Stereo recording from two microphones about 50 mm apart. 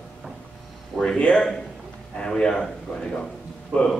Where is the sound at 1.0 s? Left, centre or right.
Centre.